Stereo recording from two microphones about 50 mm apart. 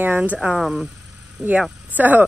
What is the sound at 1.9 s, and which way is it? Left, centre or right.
Speech, right.